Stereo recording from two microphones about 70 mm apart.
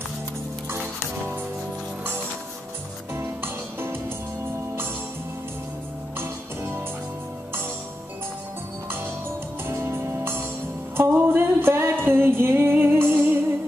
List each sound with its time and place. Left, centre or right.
3.1 s music: right
6.1 s music: right
9.7 s music: right